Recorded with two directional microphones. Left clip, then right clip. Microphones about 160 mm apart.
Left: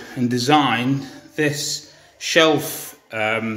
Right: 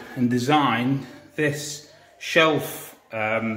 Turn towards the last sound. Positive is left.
turn(degrees=15)  # may be behind; listen again after turning